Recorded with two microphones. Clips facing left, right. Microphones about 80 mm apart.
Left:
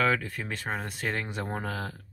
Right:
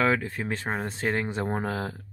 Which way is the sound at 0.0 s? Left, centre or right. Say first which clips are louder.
Right 2 dB; right.